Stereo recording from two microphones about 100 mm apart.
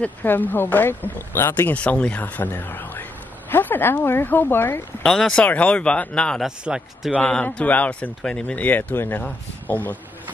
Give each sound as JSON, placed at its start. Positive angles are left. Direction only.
{"t": 0.0, "sound": "speech", "side_deg": 20}
{"t": 5.0, "sound": "speech", "side_deg": 5}
{"t": 6.4, "sound": "a man's voice", "side_deg": -5}
{"t": 7.2, "sound": "speech", "side_deg": 10}